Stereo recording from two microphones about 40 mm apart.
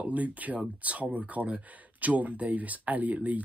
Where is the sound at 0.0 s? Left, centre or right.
Right.